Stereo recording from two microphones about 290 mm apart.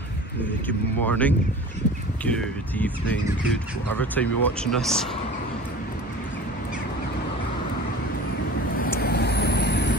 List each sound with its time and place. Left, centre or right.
0.7 s speech: centre
8.7 s vehicle: left